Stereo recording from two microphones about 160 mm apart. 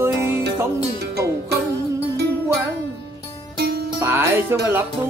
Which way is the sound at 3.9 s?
15° right (ahead or behind).